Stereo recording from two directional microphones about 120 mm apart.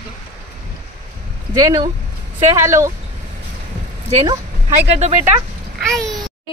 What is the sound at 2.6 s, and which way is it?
Speech, 25° right (ahead or behind).